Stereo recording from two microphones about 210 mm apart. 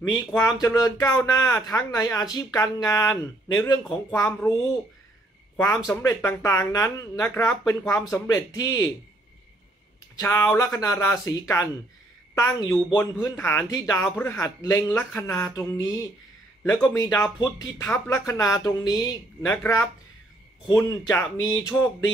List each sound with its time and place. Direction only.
0.0 s speech: 15° left (ahead or behind)
5.9 s speech: 15° left (ahead or behind)
10.2 s speech: 15° left (ahead or behind)
16.6 s speech: 5° left (ahead or behind)
16.9 s speech: 15° left (ahead or behind)